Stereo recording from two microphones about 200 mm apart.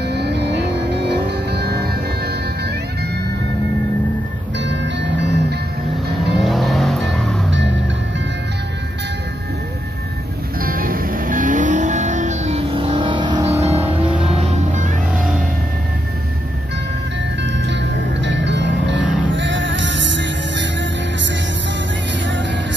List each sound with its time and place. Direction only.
0.0 s vehicle: 55° right (ahead or behind)
4.6 s music: 60° right (ahead or behind)
6.1 s music: centre (ahead or behind)
10.6 s vehicle: 45° right (ahead or behind); by 13.6 s 20° right (ahead or behind)
13.7 s music: 10° right (ahead or behind)
17.4 s music: 60° right (ahead or behind)